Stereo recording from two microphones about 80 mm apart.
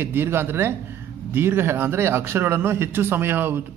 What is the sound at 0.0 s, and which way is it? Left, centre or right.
Speech, right.